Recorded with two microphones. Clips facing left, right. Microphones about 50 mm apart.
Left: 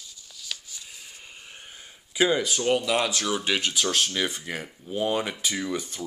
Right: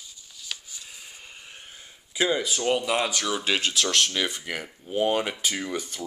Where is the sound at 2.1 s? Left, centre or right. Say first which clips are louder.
Left 2 dB; centre.